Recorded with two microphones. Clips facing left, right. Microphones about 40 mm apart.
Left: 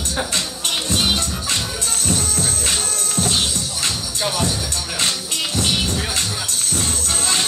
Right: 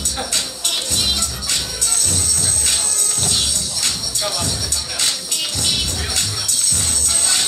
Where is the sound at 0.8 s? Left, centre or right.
Left.